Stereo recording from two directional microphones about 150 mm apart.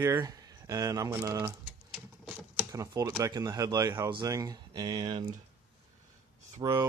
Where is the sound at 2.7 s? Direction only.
25° right (ahead or behind).